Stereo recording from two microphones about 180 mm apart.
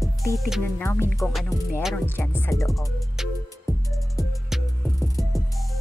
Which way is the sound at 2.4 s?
15° left (ahead or behind).